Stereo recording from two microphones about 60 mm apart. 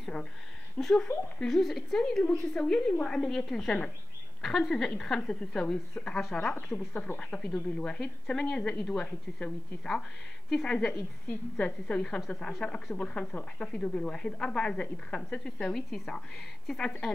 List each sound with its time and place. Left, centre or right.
0.7 s a woman's voice: centre